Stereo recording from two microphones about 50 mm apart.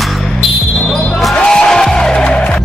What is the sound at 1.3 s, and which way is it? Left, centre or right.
Music, centre.